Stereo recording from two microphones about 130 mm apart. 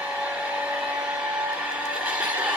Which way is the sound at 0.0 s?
10° right (ahead or behind).